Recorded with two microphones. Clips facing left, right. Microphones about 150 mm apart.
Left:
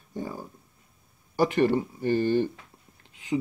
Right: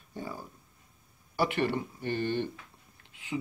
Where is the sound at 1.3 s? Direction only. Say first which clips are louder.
Left 6 dB; 40° left (ahead or behind).